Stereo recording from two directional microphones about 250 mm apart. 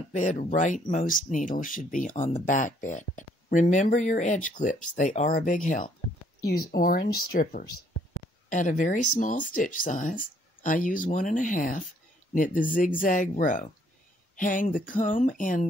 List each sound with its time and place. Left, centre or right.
0.1 s speech: left